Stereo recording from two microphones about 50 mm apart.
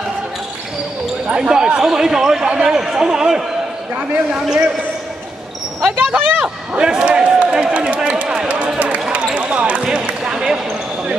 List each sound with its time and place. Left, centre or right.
1.2 s speech: centre
5.8 s speech: centre
6.8 s a sound: centre
9.1 s basketball bounce: right